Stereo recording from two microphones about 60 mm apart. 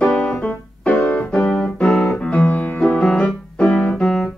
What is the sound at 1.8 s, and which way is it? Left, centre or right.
Music, centre.